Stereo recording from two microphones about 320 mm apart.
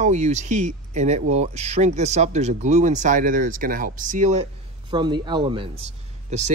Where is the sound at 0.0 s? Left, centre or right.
Right.